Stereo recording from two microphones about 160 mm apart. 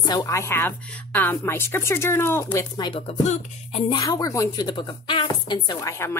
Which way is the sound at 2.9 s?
40° left (ahead or behind).